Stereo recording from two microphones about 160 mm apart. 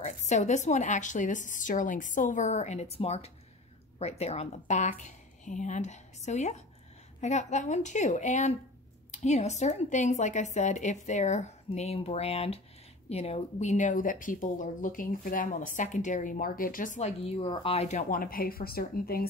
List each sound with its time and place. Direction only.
0.0 s speech: 45° left (ahead or behind)
17.2 s speech: 35° left (ahead or behind)
18.2 s speech: 65° left (ahead or behind)